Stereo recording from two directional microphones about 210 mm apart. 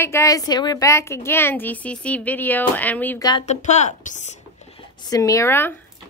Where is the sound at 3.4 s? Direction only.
35° left (ahead or behind).